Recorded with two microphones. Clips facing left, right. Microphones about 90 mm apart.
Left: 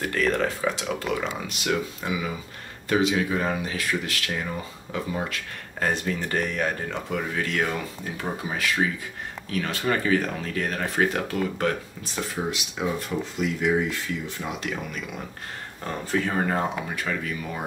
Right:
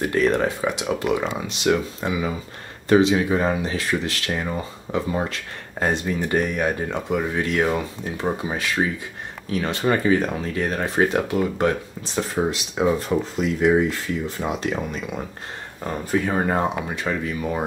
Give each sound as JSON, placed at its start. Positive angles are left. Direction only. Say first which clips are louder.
{"t": 0.0, "sound": "speech", "louder": "right 4 dB", "side_deg": -20}
{"t": 5.8, "sound": "speech", "louder": "right 3 dB", "side_deg": -20}
{"t": 12.4, "sound": "speech", "louder": "right 7 dB", "side_deg": -45}
{"t": 15.9, "sound": "speech", "louder": "right 3 dB", "side_deg": -15}